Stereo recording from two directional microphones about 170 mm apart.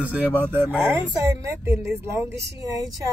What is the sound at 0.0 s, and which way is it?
Speech, 10° right (ahead or behind).